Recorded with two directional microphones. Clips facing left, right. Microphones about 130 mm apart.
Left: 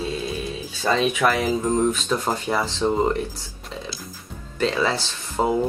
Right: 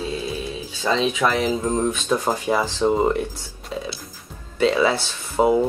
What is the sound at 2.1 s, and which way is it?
Speech, 10° right (ahead or behind).